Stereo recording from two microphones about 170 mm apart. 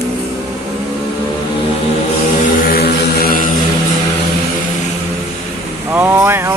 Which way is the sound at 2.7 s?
60° left (ahead or behind).